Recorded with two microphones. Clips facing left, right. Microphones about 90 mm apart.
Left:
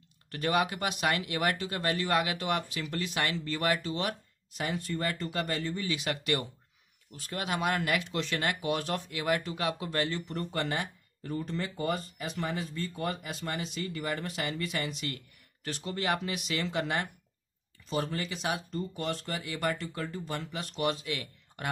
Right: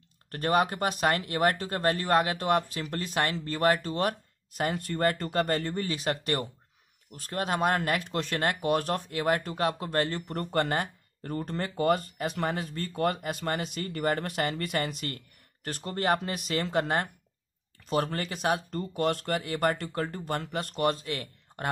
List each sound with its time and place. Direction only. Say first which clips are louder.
0.3 s speech: right 3 dB; 40° right (ahead or behind)
17.8 s speech: right 4 dB; 55° right (ahead or behind); by 21.6 s 40° right (ahead or behind)